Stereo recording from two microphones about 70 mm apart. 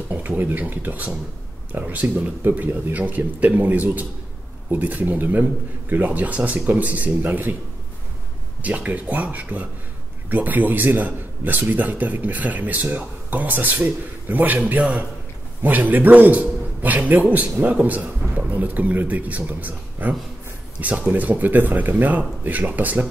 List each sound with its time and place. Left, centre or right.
0.1 s a man's voice: right
8.6 s a man's voice: right